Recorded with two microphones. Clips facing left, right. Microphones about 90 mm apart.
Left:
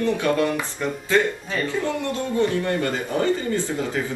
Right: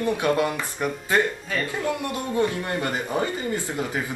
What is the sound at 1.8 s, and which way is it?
Speech, 15° right (ahead or behind).